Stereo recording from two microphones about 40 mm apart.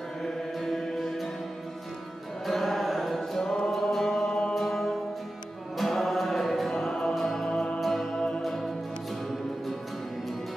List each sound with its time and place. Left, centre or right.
0.2 s mantra: centre
2.4 s mantra: centre
3.8 s music: centre
6.8 s music: centre
7.4 s music: left
7.8 s music: centre
8.1 s music: left
8.4 s music: centre